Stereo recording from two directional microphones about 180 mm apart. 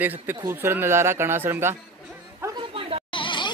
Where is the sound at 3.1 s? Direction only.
25° left (ahead or behind).